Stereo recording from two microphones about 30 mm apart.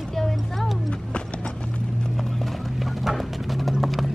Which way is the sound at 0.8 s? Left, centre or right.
Left.